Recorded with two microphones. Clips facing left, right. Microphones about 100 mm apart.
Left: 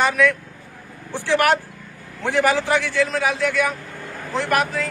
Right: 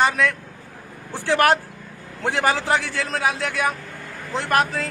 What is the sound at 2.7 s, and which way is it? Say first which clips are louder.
Speech: left 3 dB; 35° right (ahead or behind).